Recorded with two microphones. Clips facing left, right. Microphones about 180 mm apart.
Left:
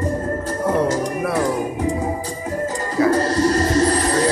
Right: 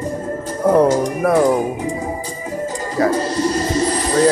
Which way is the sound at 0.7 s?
45° right (ahead or behind).